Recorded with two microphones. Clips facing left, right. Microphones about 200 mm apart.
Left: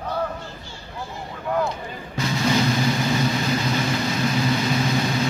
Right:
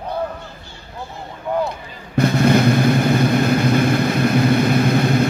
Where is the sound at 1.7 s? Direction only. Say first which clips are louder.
Left 1 dB; 60° right (ahead or behind).